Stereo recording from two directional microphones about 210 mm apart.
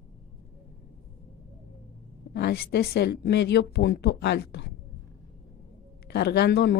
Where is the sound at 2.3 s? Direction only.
50° left (ahead or behind).